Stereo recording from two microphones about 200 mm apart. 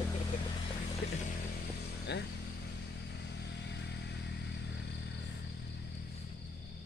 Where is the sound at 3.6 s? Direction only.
60° left (ahead or behind).